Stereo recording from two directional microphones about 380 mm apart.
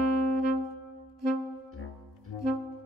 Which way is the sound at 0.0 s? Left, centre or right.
Right.